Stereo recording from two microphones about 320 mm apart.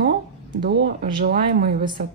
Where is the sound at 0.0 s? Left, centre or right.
Right.